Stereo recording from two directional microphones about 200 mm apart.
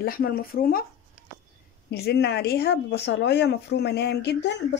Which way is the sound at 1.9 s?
55° left (ahead or behind).